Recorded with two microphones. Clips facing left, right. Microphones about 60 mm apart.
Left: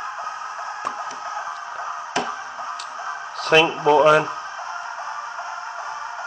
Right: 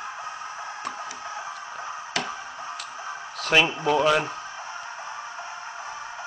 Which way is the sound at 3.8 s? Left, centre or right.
Left.